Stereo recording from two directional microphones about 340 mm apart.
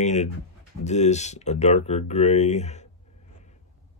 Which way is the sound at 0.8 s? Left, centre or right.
Centre.